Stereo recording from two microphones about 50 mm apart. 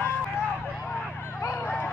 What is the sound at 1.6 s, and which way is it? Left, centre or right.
Bow-wow, left.